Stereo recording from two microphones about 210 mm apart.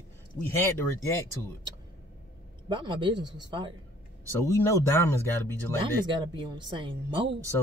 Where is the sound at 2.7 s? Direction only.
20° right (ahead or behind).